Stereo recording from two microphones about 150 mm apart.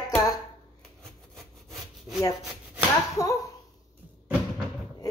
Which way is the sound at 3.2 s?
20° left (ahead or behind).